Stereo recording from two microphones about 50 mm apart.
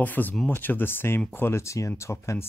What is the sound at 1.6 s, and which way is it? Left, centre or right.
Speech, left.